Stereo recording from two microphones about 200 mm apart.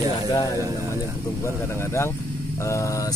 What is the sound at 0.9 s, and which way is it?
Speech, 15° left (ahead or behind).